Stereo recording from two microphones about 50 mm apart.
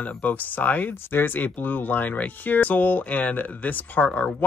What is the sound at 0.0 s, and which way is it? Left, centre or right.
Speech, left.